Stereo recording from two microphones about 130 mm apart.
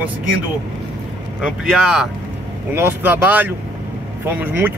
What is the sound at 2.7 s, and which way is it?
Speech, 15° right (ahead or behind).